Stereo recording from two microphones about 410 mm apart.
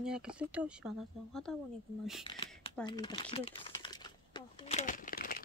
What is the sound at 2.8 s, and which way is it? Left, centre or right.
Typing, centre.